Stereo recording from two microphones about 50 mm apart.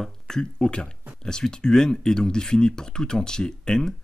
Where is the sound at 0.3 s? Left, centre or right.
Centre.